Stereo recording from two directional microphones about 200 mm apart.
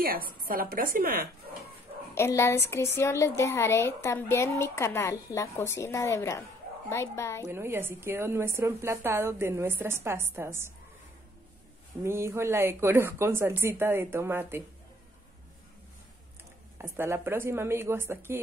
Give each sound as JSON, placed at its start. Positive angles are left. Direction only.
{"t": 0.0, "sound": "a woman's voice", "side_deg": -45}
{"t": 2.1, "sound": "a woman's voice", "side_deg": 15}
{"t": 7.4, "sound": "a woman's voice", "side_deg": -10}
{"t": 12.0, "sound": "a woman's voice", "side_deg": -15}
{"t": 16.7, "sound": "a woman's voice", "side_deg": -10}